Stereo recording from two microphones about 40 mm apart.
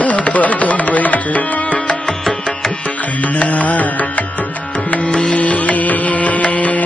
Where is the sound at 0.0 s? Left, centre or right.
Left.